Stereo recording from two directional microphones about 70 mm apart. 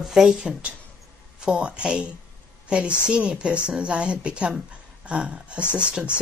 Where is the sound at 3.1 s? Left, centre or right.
Centre.